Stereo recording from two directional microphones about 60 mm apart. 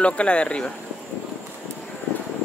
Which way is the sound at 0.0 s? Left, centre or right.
Centre.